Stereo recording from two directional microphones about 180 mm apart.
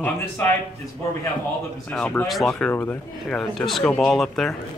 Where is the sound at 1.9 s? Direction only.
5° left (ahead or behind).